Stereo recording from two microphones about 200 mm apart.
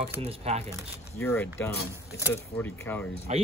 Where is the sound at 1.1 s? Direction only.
10° left (ahead or behind).